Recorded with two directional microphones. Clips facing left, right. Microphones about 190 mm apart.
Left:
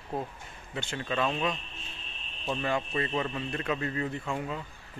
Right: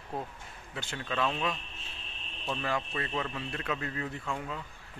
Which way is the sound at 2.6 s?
Centre (ahead or behind).